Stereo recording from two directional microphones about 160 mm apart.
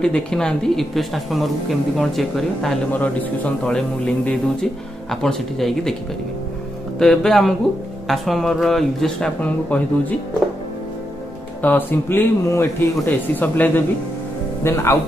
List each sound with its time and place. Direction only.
0.0 s speech: 5° left (ahead or behind)
7.0 s speech: centre (ahead or behind)
11.6 s a man's voice: 15° left (ahead or behind)